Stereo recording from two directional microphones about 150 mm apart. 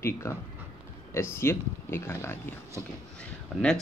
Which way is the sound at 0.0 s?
20° left (ahead or behind).